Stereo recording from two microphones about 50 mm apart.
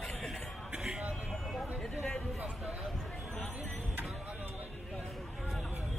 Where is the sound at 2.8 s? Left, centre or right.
Centre.